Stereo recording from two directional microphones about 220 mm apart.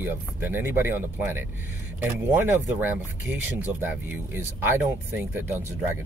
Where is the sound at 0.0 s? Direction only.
10° right (ahead or behind).